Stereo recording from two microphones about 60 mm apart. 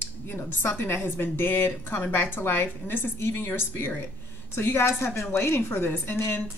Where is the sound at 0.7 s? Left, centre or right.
Left.